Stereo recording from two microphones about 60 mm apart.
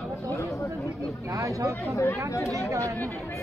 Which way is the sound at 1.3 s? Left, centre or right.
Right.